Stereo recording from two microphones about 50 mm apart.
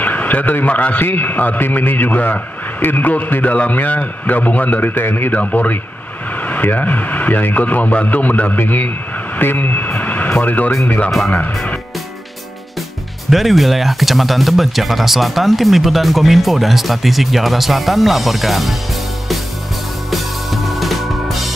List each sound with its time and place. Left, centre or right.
0.0 s a man's voice: left
11.1 s speech: centre
13.3 s speech: centre
20.1 s music: centre